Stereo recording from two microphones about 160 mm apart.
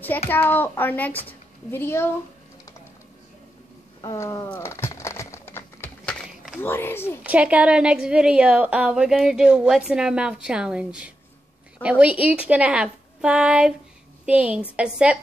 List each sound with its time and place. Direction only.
0.3 s speech: 10° left (ahead or behind)
4.0 s a sound: 20° left (ahead or behind)
4.5 s crumpling: 15° left (ahead or behind)
6.2 s a sound: 5° right (ahead or behind)
6.6 s speech: 15° left (ahead or behind)
7.2 s a woman's voice: 10° right (ahead or behind)